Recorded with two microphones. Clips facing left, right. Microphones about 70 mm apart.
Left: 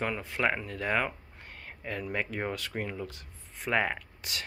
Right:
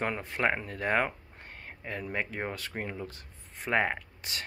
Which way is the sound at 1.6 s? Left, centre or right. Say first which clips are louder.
Left 1 dB; right.